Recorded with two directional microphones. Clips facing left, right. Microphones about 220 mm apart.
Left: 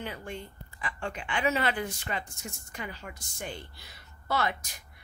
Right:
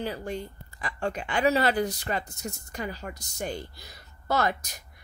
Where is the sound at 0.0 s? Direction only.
35° right (ahead or behind).